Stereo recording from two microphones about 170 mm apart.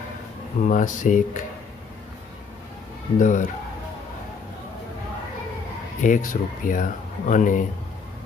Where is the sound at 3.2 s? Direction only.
50° left (ahead or behind).